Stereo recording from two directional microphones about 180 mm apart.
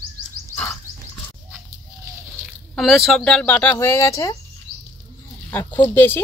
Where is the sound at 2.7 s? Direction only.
Centre (ahead or behind); by 4.4 s 15° left (ahead or behind).